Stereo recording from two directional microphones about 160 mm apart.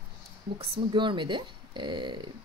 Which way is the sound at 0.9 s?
30° right (ahead or behind).